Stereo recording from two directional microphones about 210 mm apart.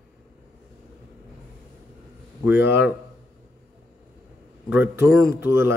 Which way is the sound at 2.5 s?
50° left (ahead or behind).